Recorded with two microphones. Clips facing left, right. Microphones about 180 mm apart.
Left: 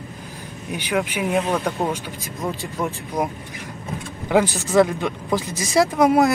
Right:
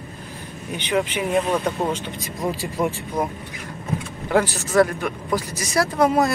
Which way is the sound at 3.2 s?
15° left (ahead or behind).